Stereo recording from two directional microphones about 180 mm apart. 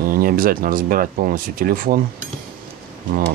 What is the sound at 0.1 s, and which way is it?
Speech, 55° right (ahead or behind).